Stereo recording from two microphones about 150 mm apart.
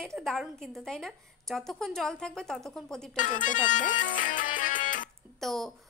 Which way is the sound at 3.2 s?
60° left (ahead or behind).